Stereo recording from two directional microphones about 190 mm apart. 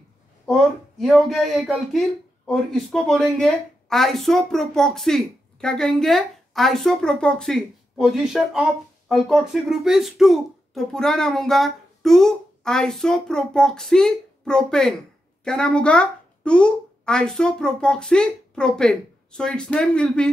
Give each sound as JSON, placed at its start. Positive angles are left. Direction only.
{"t": 0.5, "sound": "a woman's voice", "side_deg": 0}